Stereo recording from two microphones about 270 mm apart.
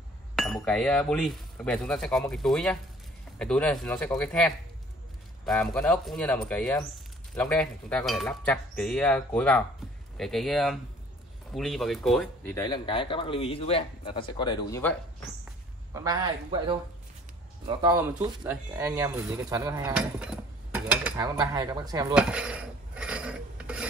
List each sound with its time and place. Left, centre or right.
0.4 s speech: centre
12.6 s speech: centre
15.9 s a man's voice: centre
21.2 s a man's voice: centre
22.1 s mechanisms: centre